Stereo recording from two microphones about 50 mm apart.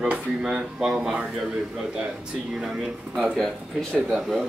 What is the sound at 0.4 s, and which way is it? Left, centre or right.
Speech, centre.